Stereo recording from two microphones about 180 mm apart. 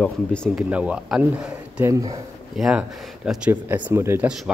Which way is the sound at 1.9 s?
20° right (ahead or behind).